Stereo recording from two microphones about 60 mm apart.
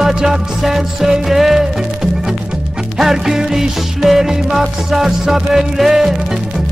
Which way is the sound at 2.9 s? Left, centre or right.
Centre.